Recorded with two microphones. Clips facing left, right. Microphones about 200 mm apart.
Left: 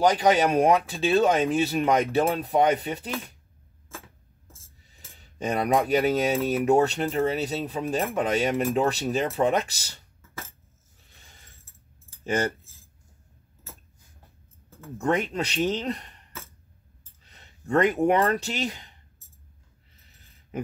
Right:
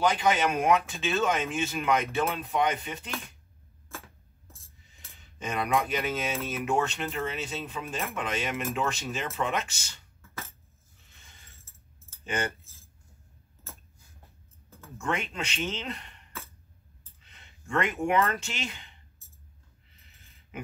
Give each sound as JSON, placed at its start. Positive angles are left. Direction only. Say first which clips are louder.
{"t": 0.0, "sound": "speech", "louder": "left 5 dB", "side_deg": 40}
{"t": 4.8, "sound": "speech", "louder": "left 4 dB", "side_deg": 40}
{"t": 12.3, "sound": "speech", "louder": "left 6 dB", "side_deg": 40}
{"t": 15.0, "sound": "speech", "louder": "left 7 dB", "side_deg": 35}
{"t": 17.2, "sound": "speech", "louder": "left 6 dB", "side_deg": 35}